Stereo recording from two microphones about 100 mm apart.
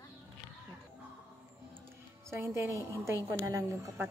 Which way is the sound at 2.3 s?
25° right (ahead or behind).